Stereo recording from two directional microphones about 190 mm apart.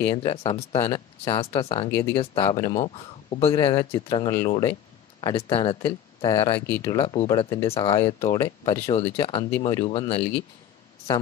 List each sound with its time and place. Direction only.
0.0 s speech: 25° left (ahead or behind)
8.8 s speech: 30° left (ahead or behind)